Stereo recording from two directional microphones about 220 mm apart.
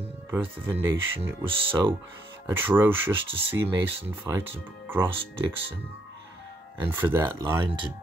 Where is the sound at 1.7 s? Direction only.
20° right (ahead or behind).